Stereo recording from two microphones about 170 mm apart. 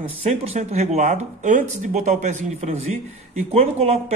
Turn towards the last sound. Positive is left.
turn(degrees=-35)  # may be behind; listen again after turning